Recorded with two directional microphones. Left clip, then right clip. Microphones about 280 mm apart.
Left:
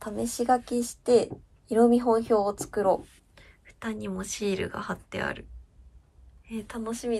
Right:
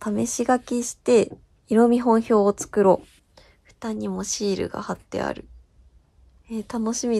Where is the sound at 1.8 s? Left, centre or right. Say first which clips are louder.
Right 3 dB; right.